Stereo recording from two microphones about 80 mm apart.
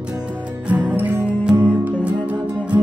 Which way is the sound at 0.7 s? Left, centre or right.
Right.